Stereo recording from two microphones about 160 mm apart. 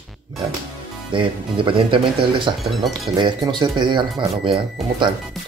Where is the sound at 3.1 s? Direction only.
30° right (ahead or behind).